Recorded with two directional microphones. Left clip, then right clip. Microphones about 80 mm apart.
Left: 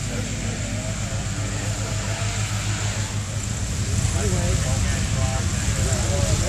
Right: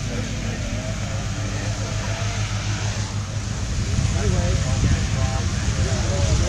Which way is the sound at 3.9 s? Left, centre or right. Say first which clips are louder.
Even; centre.